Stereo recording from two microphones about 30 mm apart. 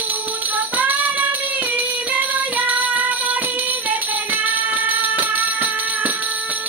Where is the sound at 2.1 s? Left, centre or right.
Right.